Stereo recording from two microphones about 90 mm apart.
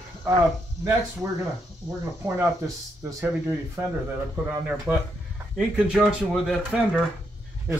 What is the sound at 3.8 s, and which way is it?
Speech, 30° right (ahead or behind).